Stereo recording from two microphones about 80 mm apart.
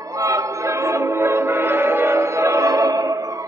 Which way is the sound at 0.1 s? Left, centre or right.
Right.